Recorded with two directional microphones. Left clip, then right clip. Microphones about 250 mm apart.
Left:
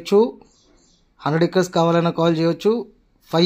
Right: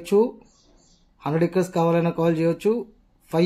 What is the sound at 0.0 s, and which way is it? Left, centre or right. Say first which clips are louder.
Speech: left 4 dB; centre.